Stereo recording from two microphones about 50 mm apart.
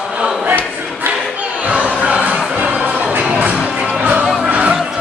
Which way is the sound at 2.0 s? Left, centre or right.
Right.